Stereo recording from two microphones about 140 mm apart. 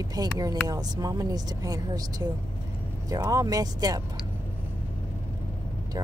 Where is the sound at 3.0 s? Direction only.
25° right (ahead or behind).